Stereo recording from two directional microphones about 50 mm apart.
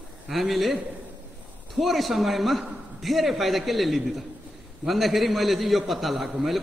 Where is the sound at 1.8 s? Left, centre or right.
Centre.